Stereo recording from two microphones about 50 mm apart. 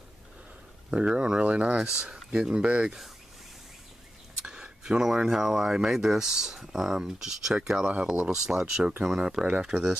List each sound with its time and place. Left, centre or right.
0.8 s speech: right
4.4 s speech: centre